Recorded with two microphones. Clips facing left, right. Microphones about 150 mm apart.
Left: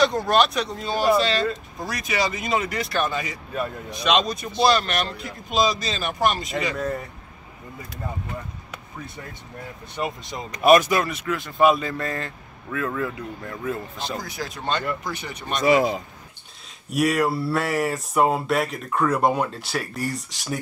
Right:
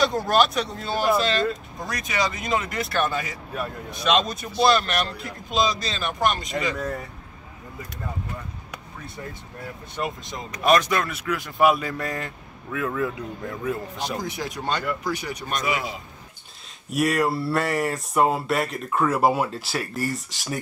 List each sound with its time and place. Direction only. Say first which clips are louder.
0.1 s speech: even; 5° right (ahead or behind)
9.9 s speech: left 1 dB; centre (ahead or behind)
11.1 s speech: left 1 dB; 5° right (ahead or behind)
15.6 s speech: left 12 dB; 40° left (ahead or behind)
16.9 s speech: left 1 dB; centre (ahead or behind)